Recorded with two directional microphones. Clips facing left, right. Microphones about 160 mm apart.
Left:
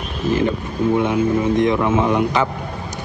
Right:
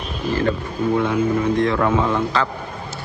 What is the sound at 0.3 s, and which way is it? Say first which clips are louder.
Speech: left 2 dB; 20° left (ahead or behind).